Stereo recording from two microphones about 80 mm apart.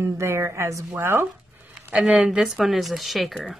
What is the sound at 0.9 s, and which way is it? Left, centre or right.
Speech, right.